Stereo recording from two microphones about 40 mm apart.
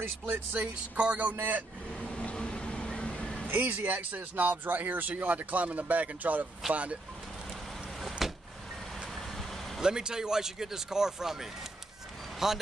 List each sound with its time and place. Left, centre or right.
0.5 s speech: right
2.0 s vehicle: left
3.4 s speech: right
8.2 s vehicle: centre
9.8 s speech: centre
12.4 s speech: centre